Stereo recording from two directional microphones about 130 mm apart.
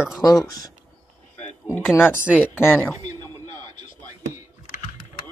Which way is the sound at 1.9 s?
15° left (ahead or behind).